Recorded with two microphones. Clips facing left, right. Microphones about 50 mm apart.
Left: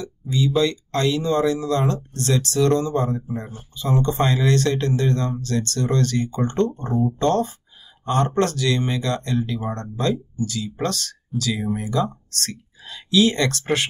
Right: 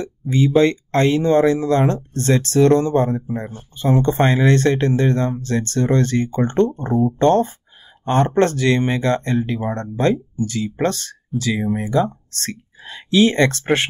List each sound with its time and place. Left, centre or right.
0.0 s speech: right
8.0 s speech: right